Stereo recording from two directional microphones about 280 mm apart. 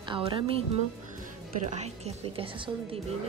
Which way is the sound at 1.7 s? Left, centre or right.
Right.